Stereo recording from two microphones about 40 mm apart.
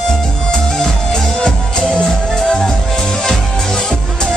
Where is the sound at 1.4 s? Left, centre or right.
Centre.